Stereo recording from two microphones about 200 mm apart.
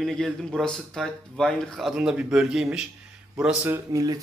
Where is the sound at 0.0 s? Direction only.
Centre (ahead or behind).